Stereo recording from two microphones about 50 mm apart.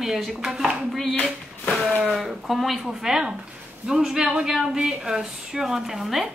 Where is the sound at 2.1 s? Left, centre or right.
Centre.